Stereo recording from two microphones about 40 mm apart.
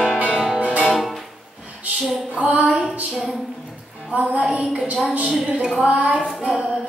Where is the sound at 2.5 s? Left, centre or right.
Right.